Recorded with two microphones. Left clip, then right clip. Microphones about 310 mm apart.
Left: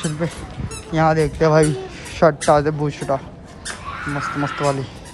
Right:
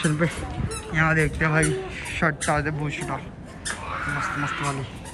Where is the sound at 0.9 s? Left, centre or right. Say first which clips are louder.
Left 5 dB; centre.